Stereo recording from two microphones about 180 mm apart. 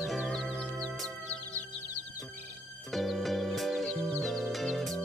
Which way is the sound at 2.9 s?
Centre (ahead or behind).